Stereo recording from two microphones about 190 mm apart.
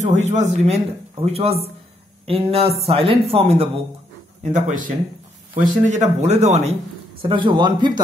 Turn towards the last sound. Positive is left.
turn(degrees=-25)  # may be behind; listen again after turning